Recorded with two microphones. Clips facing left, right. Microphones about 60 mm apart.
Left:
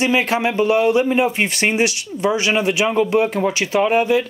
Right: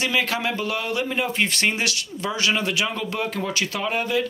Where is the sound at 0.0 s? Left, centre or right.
Left.